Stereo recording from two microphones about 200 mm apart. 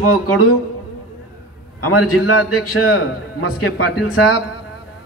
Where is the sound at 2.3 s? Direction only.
90° left.